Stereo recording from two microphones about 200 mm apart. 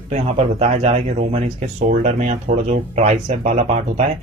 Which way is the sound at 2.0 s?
35° right (ahead or behind).